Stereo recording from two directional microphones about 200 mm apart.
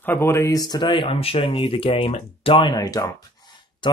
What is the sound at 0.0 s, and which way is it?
Speech, 10° left (ahead or behind).